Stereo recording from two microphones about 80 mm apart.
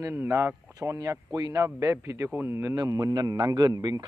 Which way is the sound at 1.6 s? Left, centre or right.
Right.